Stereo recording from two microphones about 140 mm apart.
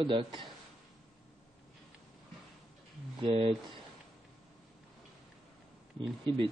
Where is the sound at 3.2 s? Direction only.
40° right (ahead or behind).